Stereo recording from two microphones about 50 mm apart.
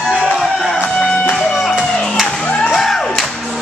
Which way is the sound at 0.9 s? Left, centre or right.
Centre.